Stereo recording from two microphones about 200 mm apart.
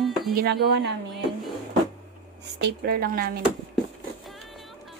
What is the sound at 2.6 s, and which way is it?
Speech, 50° right (ahead or behind).